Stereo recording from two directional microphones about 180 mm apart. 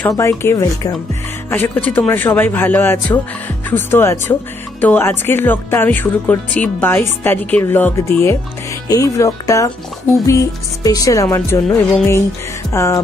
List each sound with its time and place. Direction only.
0.2 s speech: 15° left (ahead or behind)